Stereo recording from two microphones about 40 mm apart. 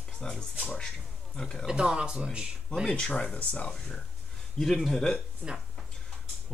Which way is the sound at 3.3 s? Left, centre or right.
Left.